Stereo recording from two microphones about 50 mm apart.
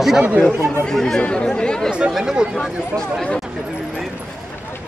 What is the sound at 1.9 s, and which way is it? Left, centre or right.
Speech, right.